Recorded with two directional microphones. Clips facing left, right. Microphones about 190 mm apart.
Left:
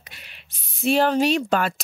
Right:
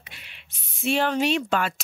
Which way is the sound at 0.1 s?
40° left (ahead or behind).